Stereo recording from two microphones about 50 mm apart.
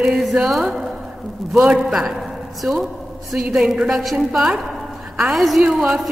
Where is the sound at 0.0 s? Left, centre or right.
Centre.